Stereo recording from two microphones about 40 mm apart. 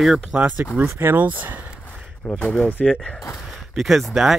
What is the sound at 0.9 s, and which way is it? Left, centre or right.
Speech, right.